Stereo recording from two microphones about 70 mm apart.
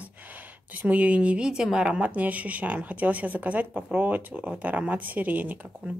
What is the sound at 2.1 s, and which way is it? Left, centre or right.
A woman's voice, right.